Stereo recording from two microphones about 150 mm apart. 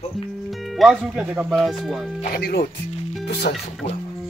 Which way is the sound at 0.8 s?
5° right (ahead or behind).